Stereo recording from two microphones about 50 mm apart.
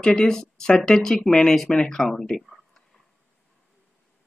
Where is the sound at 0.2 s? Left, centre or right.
Centre.